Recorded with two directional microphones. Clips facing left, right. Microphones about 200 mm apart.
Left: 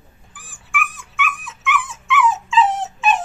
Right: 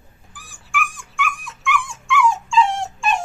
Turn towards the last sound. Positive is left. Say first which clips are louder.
# left 3 dB
turn(degrees=5)  # may be behind; listen again after turning